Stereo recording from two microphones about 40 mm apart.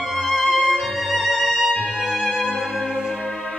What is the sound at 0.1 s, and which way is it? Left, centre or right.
Violin, centre.